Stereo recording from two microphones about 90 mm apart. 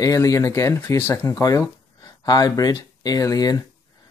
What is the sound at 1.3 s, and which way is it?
Speech, 40° left (ahead or behind).